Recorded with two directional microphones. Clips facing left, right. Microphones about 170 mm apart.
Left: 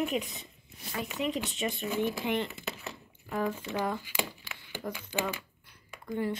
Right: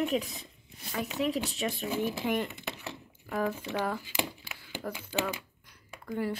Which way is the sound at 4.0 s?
15° right (ahead or behind).